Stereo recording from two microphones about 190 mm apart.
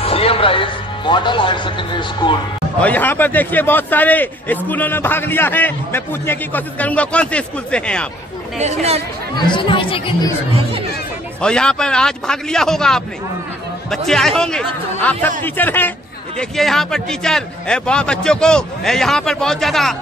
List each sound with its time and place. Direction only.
0.0 s speech: 30° left (ahead or behind)
2.8 s a man's voice: 10° left (ahead or behind)
8.5 s speech: 35° right (ahead or behind)
9.5 s speech: 25° left (ahead or behind)
11.4 s a man's voice: 5° left (ahead or behind)